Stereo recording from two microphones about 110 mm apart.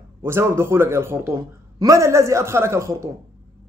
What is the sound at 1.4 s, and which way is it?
A man's voice, 30° right (ahead or behind).